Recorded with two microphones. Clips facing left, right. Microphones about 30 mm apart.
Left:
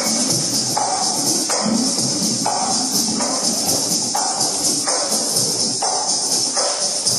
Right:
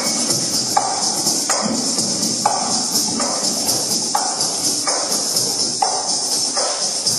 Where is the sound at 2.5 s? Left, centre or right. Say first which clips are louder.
Even; centre.